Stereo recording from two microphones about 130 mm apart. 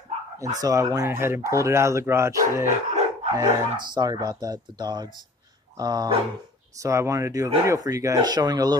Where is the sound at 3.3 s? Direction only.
30° right (ahead or behind).